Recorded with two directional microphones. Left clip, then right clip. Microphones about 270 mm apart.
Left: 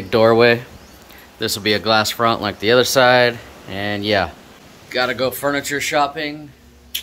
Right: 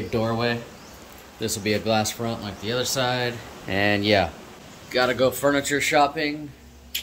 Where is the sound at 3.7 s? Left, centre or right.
Centre.